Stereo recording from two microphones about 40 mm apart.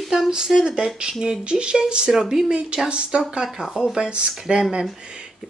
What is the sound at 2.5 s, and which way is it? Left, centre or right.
Speech, right.